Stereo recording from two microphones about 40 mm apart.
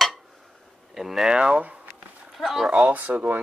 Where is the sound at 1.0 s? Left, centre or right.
Centre.